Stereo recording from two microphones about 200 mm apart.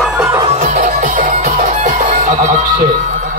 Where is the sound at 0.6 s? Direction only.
40° right (ahead or behind).